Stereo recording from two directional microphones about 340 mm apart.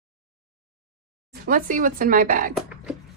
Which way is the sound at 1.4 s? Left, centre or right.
Right.